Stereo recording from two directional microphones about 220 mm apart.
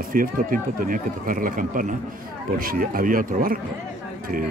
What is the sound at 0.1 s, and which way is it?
Speech, 40° right (ahead or behind).